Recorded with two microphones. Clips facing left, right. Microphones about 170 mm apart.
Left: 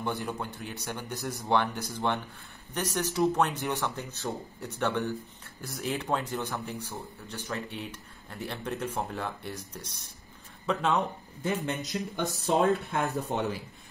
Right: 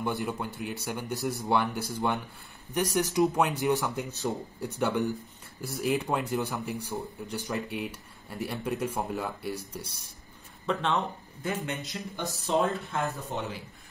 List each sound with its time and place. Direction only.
0.0 s speech: 5° right (ahead or behind)
10.7 s speech: 5° left (ahead or behind)
11.5 s speech: 35° left (ahead or behind)
12.7 s speech: 65° left (ahead or behind)